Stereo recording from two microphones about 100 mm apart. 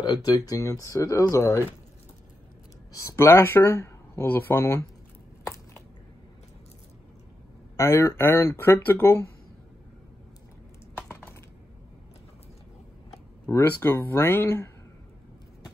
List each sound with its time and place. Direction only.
0.0 s speech: 40° left (ahead or behind)
2.9 s speech: 30° left (ahead or behind)
7.7 s speech: 30° left (ahead or behind)
11.0 s a sound: 20° left (ahead or behind)
13.5 s speech: 25° left (ahead or behind)